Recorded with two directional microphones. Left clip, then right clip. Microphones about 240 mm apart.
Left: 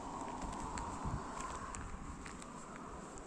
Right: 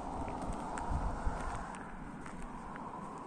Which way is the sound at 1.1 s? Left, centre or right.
Right.